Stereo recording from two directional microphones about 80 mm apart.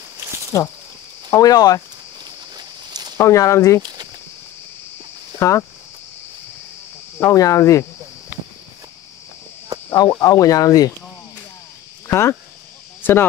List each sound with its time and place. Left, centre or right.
1.3 s speech: left
2.5 s walk: right
3.2 s speech: left
3.8 s speech: right
5.4 s speech: left
7.2 s speech: left
9.8 s radio: left
10.1 s speech: left
12.1 s speech: left